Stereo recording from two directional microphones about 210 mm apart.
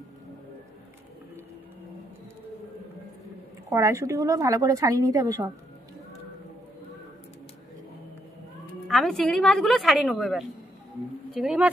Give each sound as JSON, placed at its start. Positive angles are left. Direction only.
{"t": 3.7, "sound": "a woman's voice", "side_deg": -15}
{"t": 8.8, "sound": "a woman's voice", "side_deg": 0}